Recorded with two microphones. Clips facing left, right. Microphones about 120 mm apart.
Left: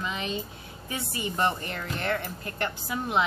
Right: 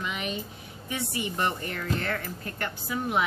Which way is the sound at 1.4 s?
25° left (ahead or behind).